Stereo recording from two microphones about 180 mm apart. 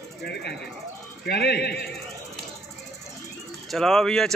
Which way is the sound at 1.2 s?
65° left (ahead or behind).